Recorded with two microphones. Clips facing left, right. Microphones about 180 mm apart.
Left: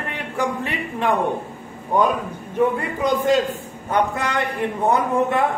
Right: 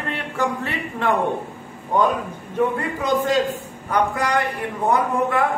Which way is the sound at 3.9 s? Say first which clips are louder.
Right 1 dB; 25° left (ahead or behind).